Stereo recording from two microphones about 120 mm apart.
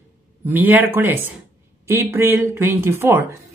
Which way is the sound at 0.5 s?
15° right (ahead or behind).